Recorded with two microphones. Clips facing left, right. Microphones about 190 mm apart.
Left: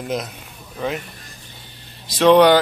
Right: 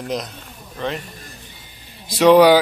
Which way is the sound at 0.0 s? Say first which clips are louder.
Even; 5° left (ahead or behind).